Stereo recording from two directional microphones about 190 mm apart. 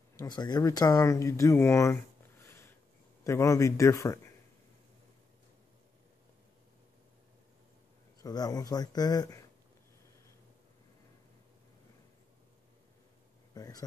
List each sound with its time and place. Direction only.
0.1 s a man's voice: 20° left (ahead or behind)
8.2 s speech: 20° left (ahead or behind)
13.6 s speech: 20° left (ahead or behind)